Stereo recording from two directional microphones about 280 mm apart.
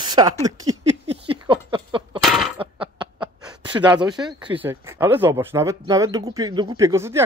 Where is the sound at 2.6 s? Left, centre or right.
Centre.